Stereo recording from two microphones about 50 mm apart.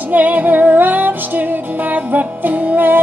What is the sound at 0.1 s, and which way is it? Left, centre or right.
Music, right.